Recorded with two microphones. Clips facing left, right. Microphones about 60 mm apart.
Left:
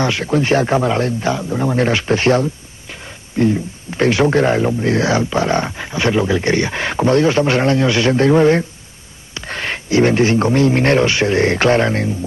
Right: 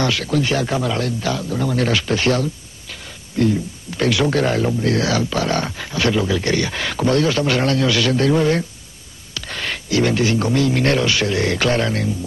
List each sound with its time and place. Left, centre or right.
0.0 s speech: left